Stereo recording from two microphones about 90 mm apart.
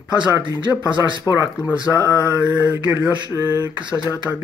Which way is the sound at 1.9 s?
35° left (ahead or behind).